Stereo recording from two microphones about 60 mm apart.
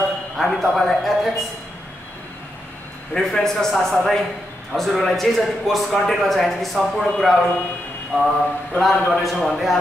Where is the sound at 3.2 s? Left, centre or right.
Centre.